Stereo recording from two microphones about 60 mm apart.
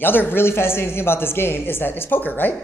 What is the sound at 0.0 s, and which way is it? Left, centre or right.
A woman's voice, left.